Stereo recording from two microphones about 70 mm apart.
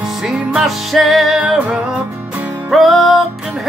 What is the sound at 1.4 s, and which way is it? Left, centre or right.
Music, centre.